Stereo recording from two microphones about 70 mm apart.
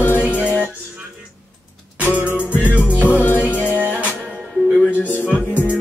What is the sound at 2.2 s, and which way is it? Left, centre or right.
Music, left.